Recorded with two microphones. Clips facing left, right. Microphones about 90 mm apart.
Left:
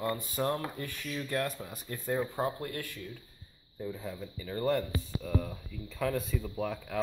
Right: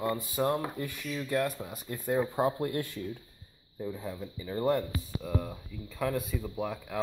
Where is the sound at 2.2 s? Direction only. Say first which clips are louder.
Right 4 dB; 20° right (ahead or behind).